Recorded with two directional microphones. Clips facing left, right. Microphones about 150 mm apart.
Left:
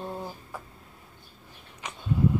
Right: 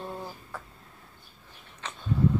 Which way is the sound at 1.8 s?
15° left (ahead or behind).